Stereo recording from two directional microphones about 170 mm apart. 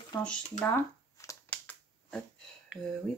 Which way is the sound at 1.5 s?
10° left (ahead or behind).